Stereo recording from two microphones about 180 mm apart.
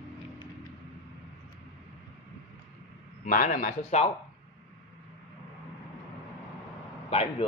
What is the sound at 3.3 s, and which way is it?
Speech, 45° left (ahead or behind).